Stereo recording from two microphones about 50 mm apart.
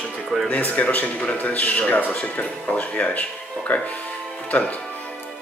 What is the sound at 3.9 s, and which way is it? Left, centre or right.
Music, left.